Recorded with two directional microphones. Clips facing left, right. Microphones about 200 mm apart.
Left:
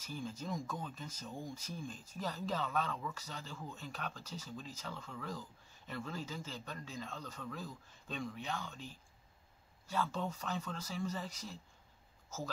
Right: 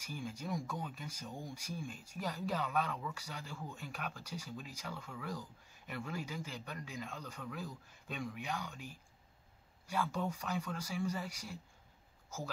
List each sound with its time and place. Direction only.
0.0 s speech: 10° right (ahead or behind)